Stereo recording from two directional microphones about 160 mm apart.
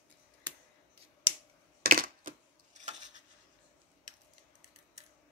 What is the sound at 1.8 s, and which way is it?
Coin, 60° right (ahead or behind).